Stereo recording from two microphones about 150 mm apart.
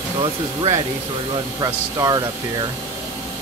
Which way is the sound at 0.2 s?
35° right (ahead or behind).